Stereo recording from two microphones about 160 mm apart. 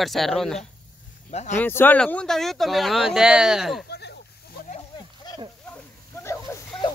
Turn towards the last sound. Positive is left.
turn(degrees=15)  # may be behind; listen again after turning